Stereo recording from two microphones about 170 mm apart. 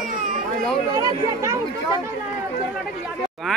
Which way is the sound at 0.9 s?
20° right (ahead or behind).